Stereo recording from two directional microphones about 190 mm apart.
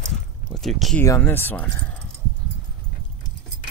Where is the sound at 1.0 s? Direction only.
10° left (ahead or behind).